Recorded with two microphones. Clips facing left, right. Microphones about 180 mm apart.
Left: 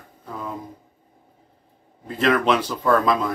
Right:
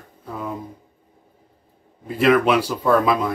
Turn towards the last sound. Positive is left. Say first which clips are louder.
# right 1 dB
turn(degrees=-5)  # may be behind; listen again after turning